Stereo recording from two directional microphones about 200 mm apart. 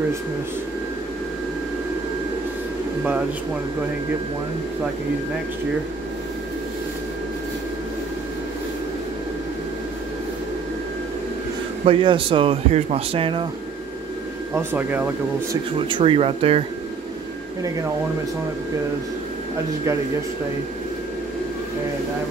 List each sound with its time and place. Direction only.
11.8 s speech: 25° right (ahead or behind)
14.5 s speech: 10° right (ahead or behind)
15.9 s speech: 25° right (ahead or behind)